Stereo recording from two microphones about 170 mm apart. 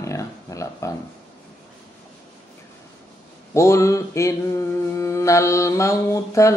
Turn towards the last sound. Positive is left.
turn(degrees=20)  # may be behind; listen again after turning